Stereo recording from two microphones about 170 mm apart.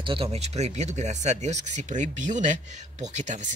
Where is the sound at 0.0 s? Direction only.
35° right (ahead or behind).